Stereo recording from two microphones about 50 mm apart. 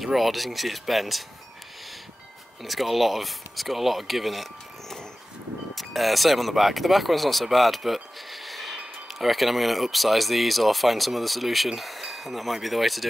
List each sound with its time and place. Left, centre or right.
0.0 s speech: centre
2.6 s speech: centre